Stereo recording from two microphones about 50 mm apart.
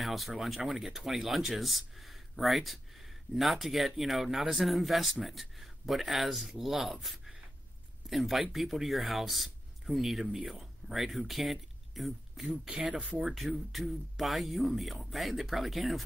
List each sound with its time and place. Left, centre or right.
0.0 s speech: centre
12.4 s speech: right
13.3 s speech: centre